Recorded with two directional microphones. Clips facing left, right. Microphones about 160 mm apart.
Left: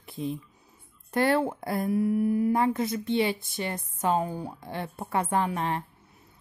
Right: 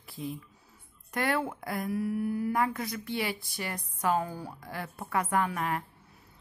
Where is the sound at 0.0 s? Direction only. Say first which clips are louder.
Left 5 dB; 20° left (ahead or behind).